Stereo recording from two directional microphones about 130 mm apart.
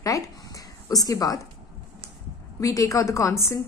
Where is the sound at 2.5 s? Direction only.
25° left (ahead or behind).